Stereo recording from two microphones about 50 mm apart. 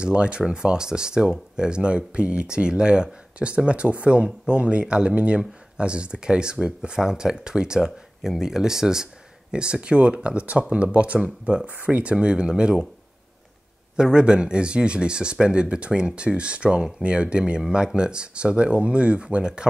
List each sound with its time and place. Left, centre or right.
0.0 s speech: right
13.9 s speech: centre